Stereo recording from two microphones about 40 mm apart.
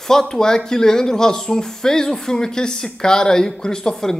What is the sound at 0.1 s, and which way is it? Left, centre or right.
A woman's voice, centre.